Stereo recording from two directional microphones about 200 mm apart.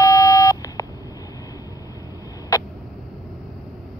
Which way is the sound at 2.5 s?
15° left (ahead or behind).